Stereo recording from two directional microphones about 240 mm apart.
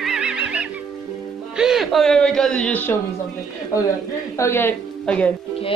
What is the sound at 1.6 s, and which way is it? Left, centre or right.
Speech, centre.